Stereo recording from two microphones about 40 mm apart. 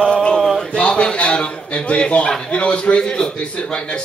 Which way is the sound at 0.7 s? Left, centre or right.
Left.